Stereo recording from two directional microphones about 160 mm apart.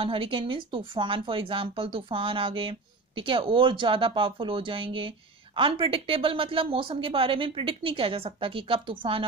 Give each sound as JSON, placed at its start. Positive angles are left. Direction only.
{"t": 0.0, "sound": "speech", "side_deg": -35}